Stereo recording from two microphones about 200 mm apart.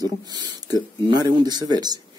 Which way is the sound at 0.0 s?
20° right (ahead or behind).